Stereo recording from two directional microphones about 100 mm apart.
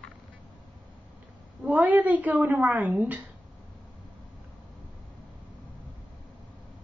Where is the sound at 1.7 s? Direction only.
15° right (ahead or behind).